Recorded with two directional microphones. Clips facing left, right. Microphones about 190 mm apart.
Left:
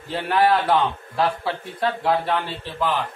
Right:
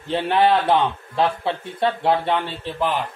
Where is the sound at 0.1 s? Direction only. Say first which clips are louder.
Right 2 dB; 25° right (ahead or behind).